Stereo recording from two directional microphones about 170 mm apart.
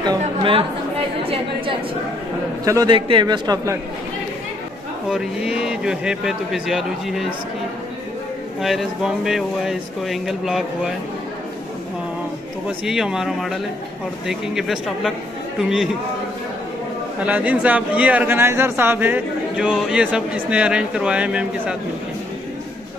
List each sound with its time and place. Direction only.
0.2 s a woman's voice: 35° right (ahead or behind)
2.6 s a man's voice: 20° right (ahead or behind)
5.1 s speech: 5° right (ahead or behind)
8.5 s speech: centre (ahead or behind)
12.6 s speech: 5° right (ahead or behind)
17.2 s a man's voice: 10° right (ahead or behind)